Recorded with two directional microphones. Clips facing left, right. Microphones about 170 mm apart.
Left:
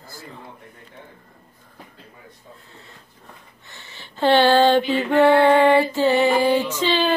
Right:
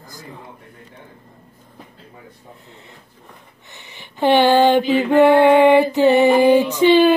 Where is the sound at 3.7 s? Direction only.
15° right (ahead or behind).